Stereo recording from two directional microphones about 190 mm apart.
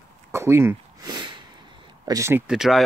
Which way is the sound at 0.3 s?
15° right (ahead or behind).